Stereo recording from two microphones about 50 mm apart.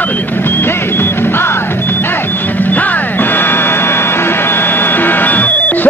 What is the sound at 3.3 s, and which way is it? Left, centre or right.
Music, left.